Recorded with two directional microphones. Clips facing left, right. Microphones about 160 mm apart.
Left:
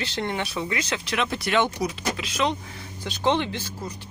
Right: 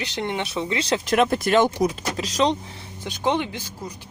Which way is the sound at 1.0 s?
45° right (ahead or behind).